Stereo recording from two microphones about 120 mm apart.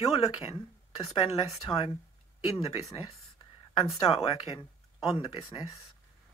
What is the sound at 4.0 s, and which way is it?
Speech, 55° left (ahead or behind).